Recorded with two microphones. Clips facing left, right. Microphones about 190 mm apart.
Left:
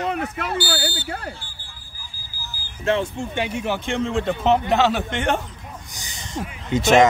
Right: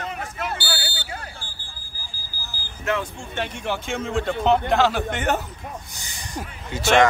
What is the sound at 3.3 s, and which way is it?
Speech, 10° left (ahead or behind).